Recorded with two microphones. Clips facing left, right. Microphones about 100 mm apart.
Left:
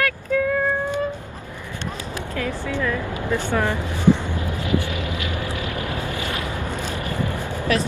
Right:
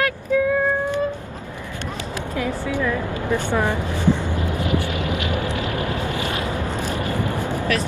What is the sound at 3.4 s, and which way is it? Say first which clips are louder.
Speech: even; 15° right (ahead or behind).